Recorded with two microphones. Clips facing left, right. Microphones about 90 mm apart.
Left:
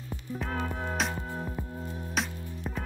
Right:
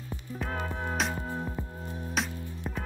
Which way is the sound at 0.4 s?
10° right (ahead or behind).